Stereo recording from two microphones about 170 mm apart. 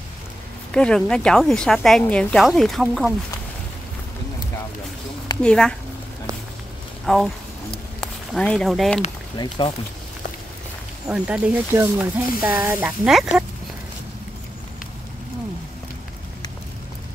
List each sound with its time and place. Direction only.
0.7 s a woman's voice: 5° left (ahead or behind)
5.4 s a woman's voice: 5° left (ahead or behind)
7.1 s a woman's voice: centre (ahead or behind)
7.7 s a sound: 5° left (ahead or behind)
9.6 s speech: 30° left (ahead or behind)
11.1 s speech: 5° right (ahead or behind)